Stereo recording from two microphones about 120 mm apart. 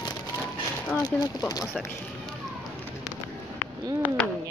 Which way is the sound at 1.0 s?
30° left (ahead or behind).